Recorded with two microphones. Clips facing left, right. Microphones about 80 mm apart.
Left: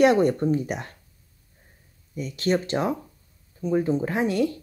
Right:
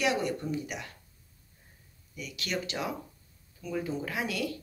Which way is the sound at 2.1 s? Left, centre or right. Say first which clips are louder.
Left 11 dB; left.